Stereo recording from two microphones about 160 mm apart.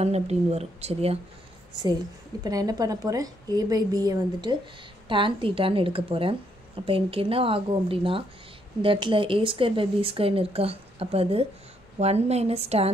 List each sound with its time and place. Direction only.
0.0 s speech: 40° right (ahead or behind)
2.4 s a woman's voice: 25° right (ahead or behind); by 12.9 s 40° right (ahead or behind)